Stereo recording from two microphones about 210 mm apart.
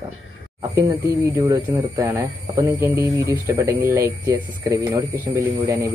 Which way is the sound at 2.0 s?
15° right (ahead or behind).